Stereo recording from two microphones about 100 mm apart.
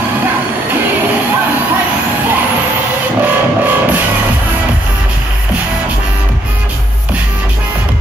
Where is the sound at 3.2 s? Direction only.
15° right (ahead or behind).